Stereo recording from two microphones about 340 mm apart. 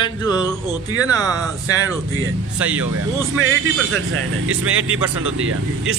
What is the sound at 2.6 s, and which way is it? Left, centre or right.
Speech, centre.